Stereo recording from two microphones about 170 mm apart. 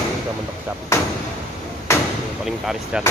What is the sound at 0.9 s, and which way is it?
Speech, 15° left (ahead or behind).